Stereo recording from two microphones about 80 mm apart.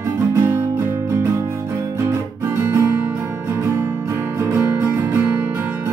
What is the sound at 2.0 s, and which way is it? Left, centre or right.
Guitar, right.